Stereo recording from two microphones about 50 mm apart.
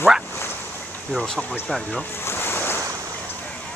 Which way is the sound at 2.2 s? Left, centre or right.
Left.